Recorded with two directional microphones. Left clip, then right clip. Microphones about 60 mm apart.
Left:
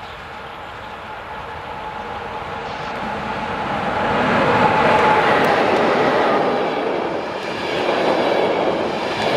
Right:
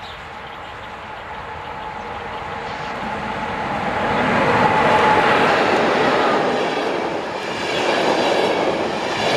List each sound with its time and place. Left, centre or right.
3.1 s vehicle: centre
5.1 s a sound: right
5.6 s vehicle: right
6.0 s train: right
7.6 s vehicle: right
7.9 s train: right